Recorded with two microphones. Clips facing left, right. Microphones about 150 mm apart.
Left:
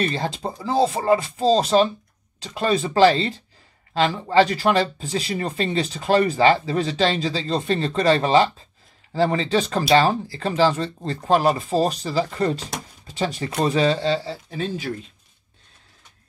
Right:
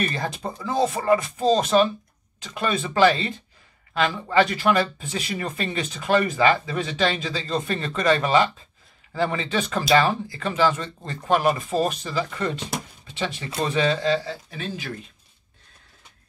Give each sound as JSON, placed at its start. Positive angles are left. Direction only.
{"t": 0.0, "sound": "speech", "side_deg": 30}